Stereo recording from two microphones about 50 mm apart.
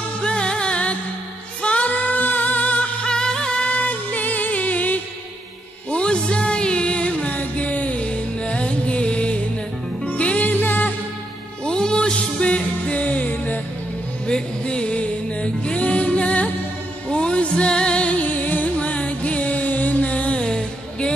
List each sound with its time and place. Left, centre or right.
0.2 s music: centre
5.9 s music: left
10.5 s music: left
11.6 s music: centre; by 13.6 s left
14.2 s music: centre